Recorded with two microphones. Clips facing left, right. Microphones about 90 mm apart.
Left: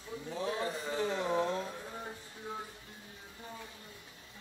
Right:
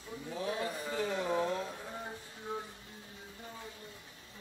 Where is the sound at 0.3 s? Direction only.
30° left (ahead or behind).